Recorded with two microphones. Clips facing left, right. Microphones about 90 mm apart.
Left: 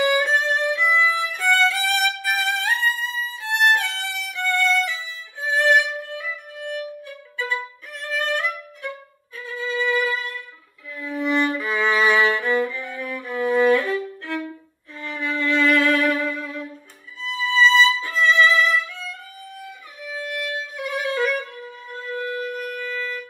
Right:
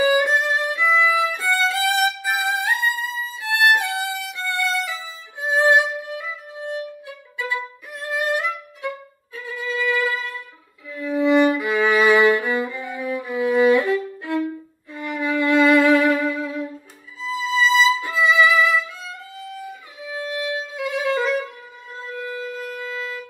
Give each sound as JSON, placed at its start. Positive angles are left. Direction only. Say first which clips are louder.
{"t": 0.0, "sound": "violin", "louder": "right 2 dB", "side_deg": -15}
{"t": 5.4, "sound": "music", "louder": "right 2 dB", "side_deg": -15}
{"t": 9.5, "sound": "violin", "louder": "even", "side_deg": -15}
{"t": 9.8, "sound": "music", "louder": "even", "side_deg": 20}
{"t": 10.1, "sound": "music", "louder": "right 1 dB", "side_deg": -15}
{"t": 10.9, "sound": "violin", "louder": "right 6 dB", "side_deg": -15}
{"t": 15.0, "sound": "music", "louder": "right 4 dB", "side_deg": -15}
{"t": 17.2, "sound": "violin", "louder": "left 2 dB", "side_deg": -15}
{"t": 19.6, "sound": "music", "louder": "right 2 dB", "side_deg": -20}
{"t": 21.9, "sound": "a sound", "louder": "left 2 dB", "side_deg": -15}
{"t": 22.6, "sound": "wind instrument", "louder": "left 1 dB", "side_deg": -15}